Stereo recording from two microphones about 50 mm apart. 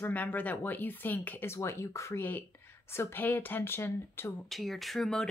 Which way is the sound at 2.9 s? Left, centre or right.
Left.